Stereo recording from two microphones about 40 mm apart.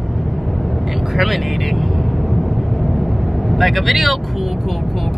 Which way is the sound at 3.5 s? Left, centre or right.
Centre.